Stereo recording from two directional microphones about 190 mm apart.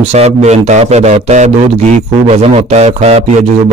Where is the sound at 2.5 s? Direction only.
35° right (ahead or behind).